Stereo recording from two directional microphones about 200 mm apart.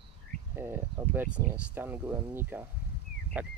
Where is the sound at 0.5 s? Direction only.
10° right (ahead or behind).